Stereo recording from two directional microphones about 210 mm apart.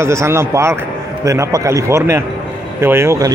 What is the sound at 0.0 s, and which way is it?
Speech, 15° right (ahead or behind).